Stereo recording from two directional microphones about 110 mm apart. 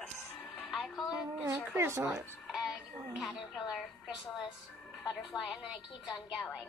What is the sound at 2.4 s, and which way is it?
Music, centre (ahead or behind).